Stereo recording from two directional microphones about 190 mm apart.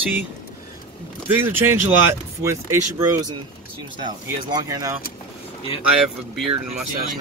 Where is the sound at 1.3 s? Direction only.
10° right (ahead or behind).